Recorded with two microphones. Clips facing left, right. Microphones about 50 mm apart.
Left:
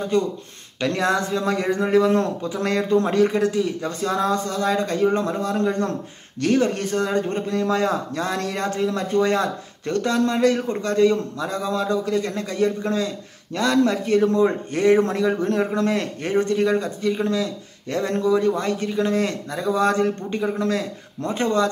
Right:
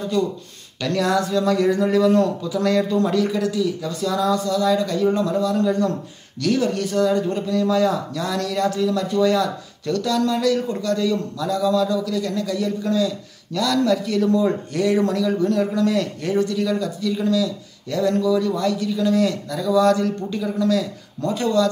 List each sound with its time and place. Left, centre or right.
0.1 s speech: left